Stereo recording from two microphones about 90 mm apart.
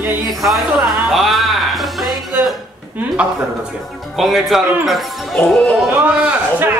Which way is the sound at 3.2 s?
15° right (ahead or behind).